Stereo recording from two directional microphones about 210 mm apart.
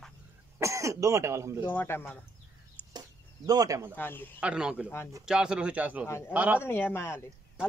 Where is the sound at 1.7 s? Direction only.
10° left (ahead or behind).